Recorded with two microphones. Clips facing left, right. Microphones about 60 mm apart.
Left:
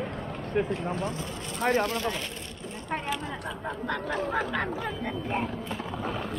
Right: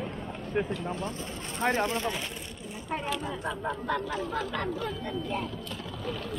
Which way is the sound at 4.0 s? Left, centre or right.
Left.